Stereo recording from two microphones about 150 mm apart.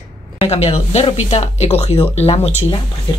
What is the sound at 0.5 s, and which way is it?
Speech, 45° left (ahead or behind).